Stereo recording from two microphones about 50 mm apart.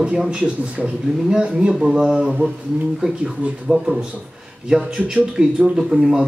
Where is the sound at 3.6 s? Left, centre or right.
Centre.